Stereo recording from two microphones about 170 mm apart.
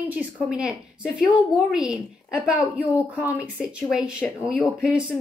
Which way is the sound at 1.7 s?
5° right (ahead or behind).